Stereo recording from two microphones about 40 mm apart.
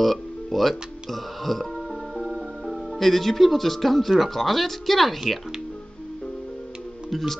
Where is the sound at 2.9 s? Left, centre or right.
Centre.